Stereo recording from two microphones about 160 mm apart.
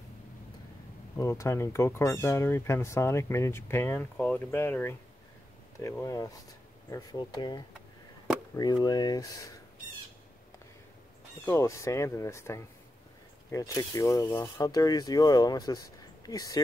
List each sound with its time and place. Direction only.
1.1 s speech: 20° left (ahead or behind)
11.4 s speech: 20° left (ahead or behind)